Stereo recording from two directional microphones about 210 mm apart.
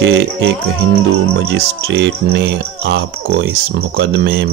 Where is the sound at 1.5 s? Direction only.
55° right (ahead or behind).